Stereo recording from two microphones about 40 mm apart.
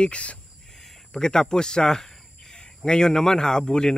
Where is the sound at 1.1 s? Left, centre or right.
Centre.